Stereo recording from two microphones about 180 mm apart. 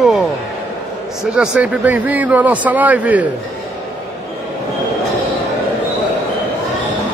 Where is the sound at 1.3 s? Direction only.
5° right (ahead or behind).